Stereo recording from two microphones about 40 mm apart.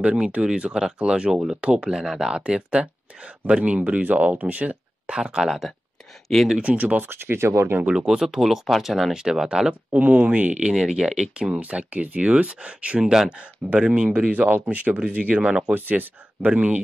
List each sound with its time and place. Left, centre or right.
0.0 s speech: right
3.6 s speech: right
5.2 s speech: centre
7.0 s speech: right
8.1 s speech: centre
9.1 s speech: centre
9.9 s speech: right
10.7 s speech: centre
11.4 s speech: right
13.0 s speech: centre
13.7 s speech: right
15.6 s speech: right
16.4 s speech: right